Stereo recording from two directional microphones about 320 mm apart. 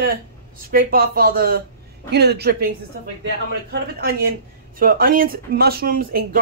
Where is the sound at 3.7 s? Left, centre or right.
Right.